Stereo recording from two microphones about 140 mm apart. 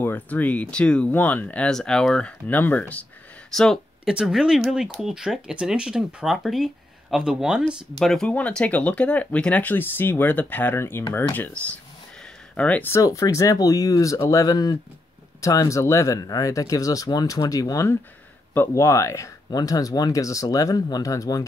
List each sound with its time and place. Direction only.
0.0 s speech: 10° left (ahead or behind)